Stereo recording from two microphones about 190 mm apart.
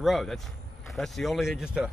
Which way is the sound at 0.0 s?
Centre (ahead or behind).